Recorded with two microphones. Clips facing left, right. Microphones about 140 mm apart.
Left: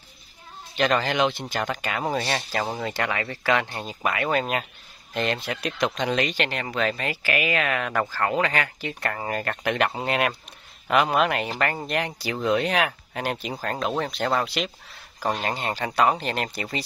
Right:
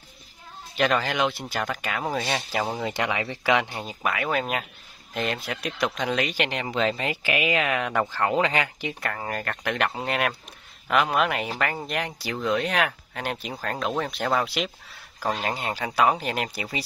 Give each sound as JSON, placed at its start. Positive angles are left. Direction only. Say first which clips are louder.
{"t": 0.7, "sound": "speech", "louder": "left 1 dB", "side_deg": 0}
{"t": 3.7, "sound": "speech", "louder": "left 1 dB", "side_deg": 0}
{"t": 6.3, "sound": "speech", "louder": "even", "side_deg": -15}
{"t": 9.0, "sound": "speech", "louder": "left 4 dB", "side_deg": 5}